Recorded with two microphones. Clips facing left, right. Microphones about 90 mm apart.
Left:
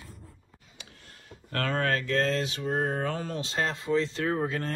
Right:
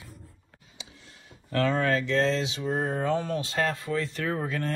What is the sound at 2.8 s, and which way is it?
Speech, 30° right (ahead or behind).